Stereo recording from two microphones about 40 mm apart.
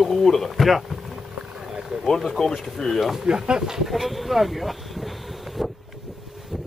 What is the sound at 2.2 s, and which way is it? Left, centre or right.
Speech, centre.